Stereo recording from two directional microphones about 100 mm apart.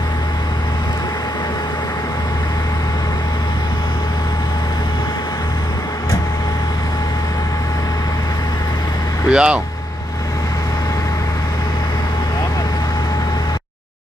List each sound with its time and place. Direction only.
9.3 s speech: 10° right (ahead or behind)